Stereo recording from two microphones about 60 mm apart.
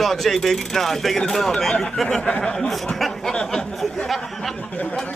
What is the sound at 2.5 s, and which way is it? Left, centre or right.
Speech, centre.